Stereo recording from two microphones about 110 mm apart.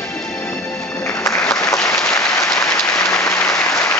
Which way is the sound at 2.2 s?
30° left (ahead or behind).